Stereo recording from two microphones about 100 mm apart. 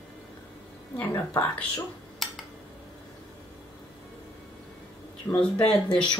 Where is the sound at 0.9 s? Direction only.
20° left (ahead or behind).